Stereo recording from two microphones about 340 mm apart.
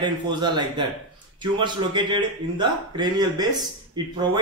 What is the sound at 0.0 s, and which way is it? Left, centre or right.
A man's voice, centre.